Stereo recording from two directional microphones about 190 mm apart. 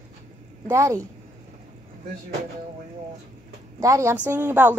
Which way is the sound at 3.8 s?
15° right (ahead or behind).